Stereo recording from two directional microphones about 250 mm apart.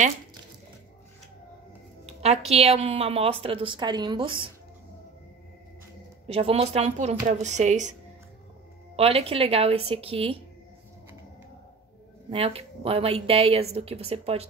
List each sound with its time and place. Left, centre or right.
2.0 s a woman's voice: right
6.2 s a woman's voice: right
8.9 s a woman's voice: right
12.3 s a woman's voice: right